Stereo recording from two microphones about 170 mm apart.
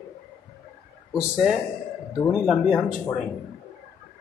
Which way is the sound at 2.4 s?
Centre (ahead or behind).